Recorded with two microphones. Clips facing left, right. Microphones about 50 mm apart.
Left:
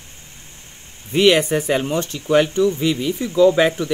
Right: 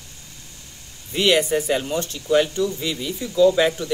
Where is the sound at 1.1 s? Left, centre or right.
Left.